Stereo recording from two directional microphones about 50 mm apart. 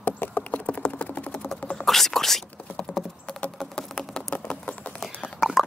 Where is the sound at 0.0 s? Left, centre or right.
Left.